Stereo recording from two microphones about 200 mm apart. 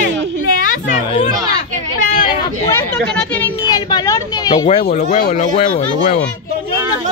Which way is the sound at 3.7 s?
20° left (ahead or behind).